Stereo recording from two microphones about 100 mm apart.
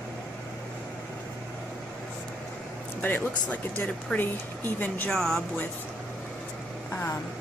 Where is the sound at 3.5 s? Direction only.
15° left (ahead or behind).